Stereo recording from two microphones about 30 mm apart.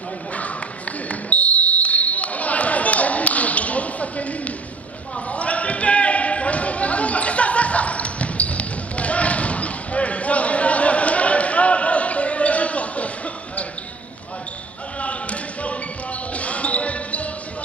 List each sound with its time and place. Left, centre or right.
1.0 s basketball bounce: left
5.3 s a sound: left
15.0 s basketball bounce: left